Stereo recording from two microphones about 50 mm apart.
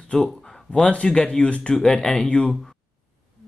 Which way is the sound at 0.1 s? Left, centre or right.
Centre.